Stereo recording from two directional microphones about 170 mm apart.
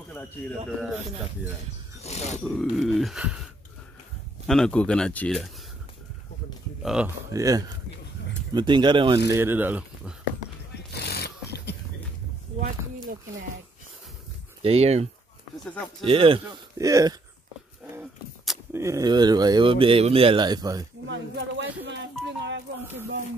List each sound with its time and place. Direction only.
0.1 s speech: 10° left (ahead or behind)
2.0 s grunt: 40° left (ahead or behind)
2.4 s speech: centre (ahead or behind)
4.5 s speech: 5° left (ahead or behind)
6.8 s speech: 5° right (ahead or behind)
7.3 s speech: 20° right (ahead or behind)
9.3 s speech: 15° right (ahead or behind)
10.9 s a sound: 75° left (ahead or behind)
14.6 s speech: 35° right (ahead or behind)
16.1 s speech: 35° right (ahead or behind)
16.7 s speech: 20° right (ahead or behind)
18.7 s speech: 15° right (ahead or behind)
21.1 s speech: 90° right